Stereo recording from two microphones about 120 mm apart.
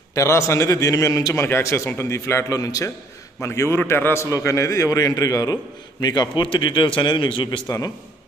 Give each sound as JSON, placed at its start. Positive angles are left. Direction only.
{"t": 0.1, "sound": "a man's voice", "side_deg": 25}
{"t": 7.6, "sound": "a man's voice", "side_deg": 25}